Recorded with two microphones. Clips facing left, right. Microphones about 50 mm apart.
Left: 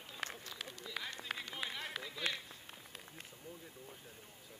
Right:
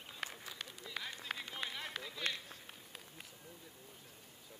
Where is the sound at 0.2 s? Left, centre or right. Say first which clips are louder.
Left 1 dB; centre.